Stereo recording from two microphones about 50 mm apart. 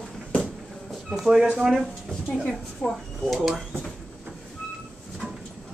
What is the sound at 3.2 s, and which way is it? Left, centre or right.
Speech, centre.